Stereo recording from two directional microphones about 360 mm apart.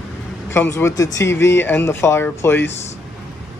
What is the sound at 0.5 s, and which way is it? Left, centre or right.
Speech, centre.